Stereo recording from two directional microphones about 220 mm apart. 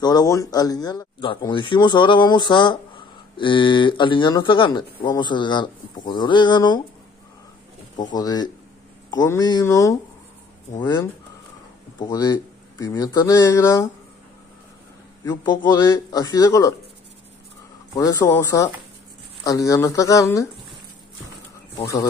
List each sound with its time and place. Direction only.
0.0 s speech: 15° left (ahead or behind)
8.1 s speech: 15° left (ahead or behind)
12.1 s speech: 15° left (ahead or behind)
15.2 s speech: 20° left (ahead or behind)
17.9 s speech: 15° left (ahead or behind)
21.7 s speech: 15° left (ahead or behind)